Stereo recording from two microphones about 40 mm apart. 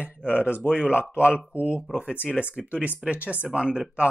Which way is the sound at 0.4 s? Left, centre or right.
Right.